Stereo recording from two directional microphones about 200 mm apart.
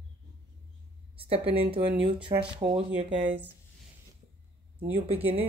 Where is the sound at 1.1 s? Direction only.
30° right (ahead or behind).